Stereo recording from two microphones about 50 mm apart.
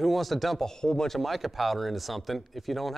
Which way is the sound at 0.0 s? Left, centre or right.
Centre.